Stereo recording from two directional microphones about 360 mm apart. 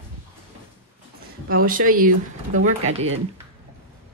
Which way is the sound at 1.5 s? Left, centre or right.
Right.